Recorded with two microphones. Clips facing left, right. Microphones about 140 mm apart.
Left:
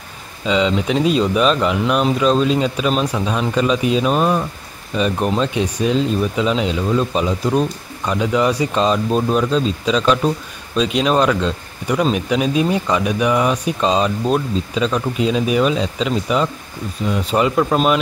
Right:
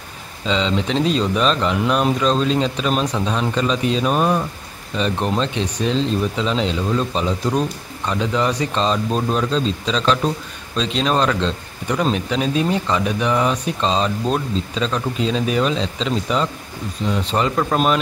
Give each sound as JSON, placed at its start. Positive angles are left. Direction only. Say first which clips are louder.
{"t": 0.5, "sound": "speech", "louder": "left 3 dB", "side_deg": 10}